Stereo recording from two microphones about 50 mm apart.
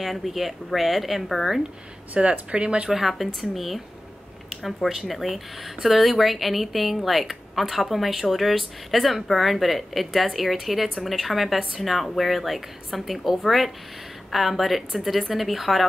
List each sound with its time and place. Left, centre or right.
0.0 s speech: centre
2.1 s speech: centre
2.9 s speech: centre
4.8 s speech: centre